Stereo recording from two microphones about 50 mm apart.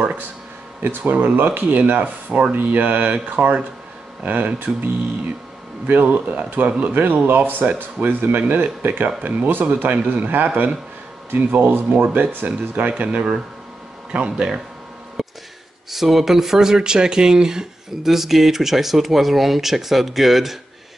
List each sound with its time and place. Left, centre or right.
0.8 s speech: right
5.9 s speech: right
14.3 s speech: centre
15.2 s music: centre
15.9 s speech: centre